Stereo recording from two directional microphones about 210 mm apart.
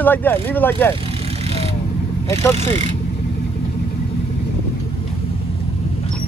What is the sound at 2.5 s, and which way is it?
Speech, 35° right (ahead or behind).